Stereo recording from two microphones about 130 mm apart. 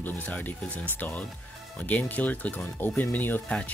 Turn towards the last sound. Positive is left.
turn(degrees=10)  # may be behind; listen again after turning